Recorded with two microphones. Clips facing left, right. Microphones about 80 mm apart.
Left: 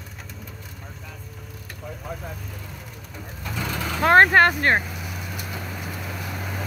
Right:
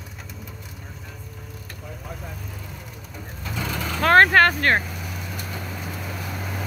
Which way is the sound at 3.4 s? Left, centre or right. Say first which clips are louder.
Even; centre.